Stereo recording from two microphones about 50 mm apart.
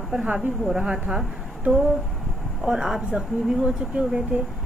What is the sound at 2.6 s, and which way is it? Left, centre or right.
Speech, centre.